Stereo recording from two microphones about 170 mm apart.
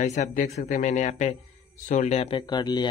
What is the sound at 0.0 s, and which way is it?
Speech, 45° left (ahead or behind).